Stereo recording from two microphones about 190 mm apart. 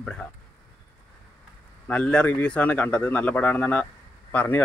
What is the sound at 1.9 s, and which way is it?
A man's voice, 5° left (ahead or behind).